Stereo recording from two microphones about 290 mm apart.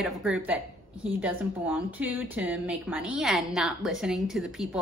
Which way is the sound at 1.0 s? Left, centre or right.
Centre.